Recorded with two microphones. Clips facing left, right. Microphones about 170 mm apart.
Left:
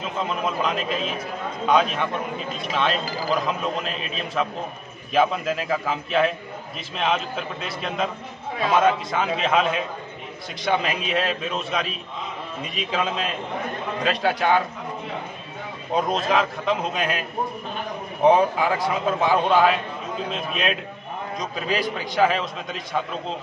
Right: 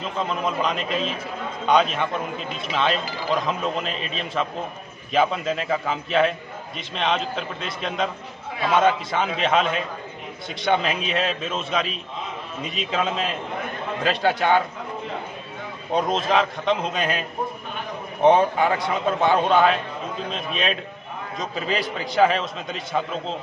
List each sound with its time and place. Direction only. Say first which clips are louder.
0.2 s a man's voice: right 1 dB; centre (ahead or behind)
15.9 s a man's voice: right 1 dB; centre (ahead or behind)